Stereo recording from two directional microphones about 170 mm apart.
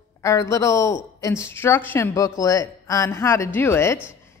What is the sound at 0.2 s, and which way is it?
A man's voice, 15° left (ahead or behind).